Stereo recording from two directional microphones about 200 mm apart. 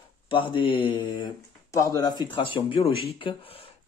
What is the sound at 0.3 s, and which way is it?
Speech, 25° left (ahead or behind).